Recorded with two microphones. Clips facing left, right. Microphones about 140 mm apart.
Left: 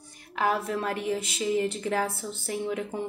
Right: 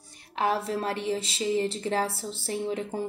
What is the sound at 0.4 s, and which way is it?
A woman's voice, 30° right (ahead or behind).